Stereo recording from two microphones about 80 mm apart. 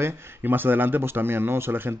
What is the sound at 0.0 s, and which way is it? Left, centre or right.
Speech, right.